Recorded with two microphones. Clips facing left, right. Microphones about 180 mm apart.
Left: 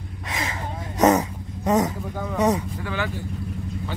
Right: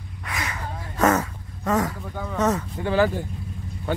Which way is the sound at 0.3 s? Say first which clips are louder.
Left 2 dB; 25° left (ahead or behind).